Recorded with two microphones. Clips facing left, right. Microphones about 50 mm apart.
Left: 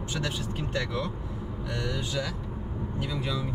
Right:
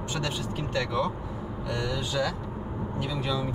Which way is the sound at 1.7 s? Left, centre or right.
Centre.